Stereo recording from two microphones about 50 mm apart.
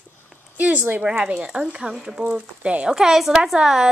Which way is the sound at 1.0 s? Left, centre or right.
Centre.